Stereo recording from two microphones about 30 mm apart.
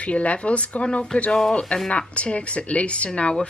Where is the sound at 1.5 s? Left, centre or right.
Left.